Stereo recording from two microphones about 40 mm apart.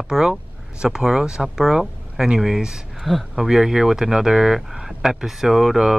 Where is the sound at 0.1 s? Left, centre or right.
Centre.